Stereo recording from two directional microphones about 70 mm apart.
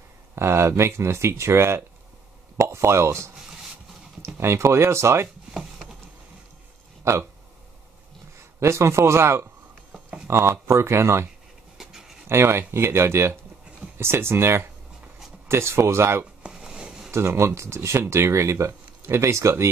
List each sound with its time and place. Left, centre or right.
0.4 s speech: right
4.4 s speech: right
7.1 s speech: right
8.4 s a man's voice: right
11.8 s a sound: centre
12.3 s speech: right
16.4 s a sound: centre
17.1 s speech: right